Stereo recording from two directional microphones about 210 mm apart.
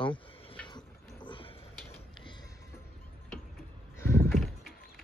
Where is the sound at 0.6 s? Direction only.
25° left (ahead or behind).